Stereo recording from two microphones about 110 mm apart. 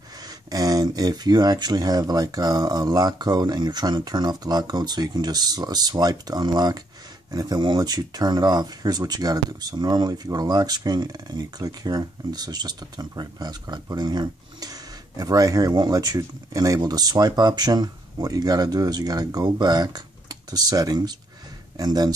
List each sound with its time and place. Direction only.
0.5 s speech: 35° right (ahead or behind)